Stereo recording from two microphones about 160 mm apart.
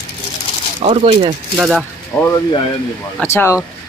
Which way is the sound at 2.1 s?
10° left (ahead or behind).